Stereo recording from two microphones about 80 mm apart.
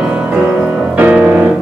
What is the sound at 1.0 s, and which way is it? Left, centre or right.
Music, right.